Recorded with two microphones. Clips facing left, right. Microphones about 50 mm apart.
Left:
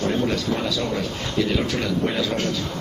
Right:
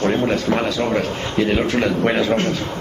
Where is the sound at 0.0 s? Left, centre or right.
Right.